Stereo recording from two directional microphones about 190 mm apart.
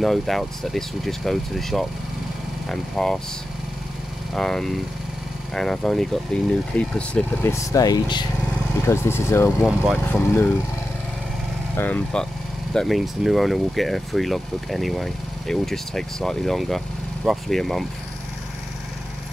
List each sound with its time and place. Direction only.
0.0 s speech: centre (ahead or behind)
4.3 s speech: 5° left (ahead or behind)
11.7 s speech: 10° left (ahead or behind)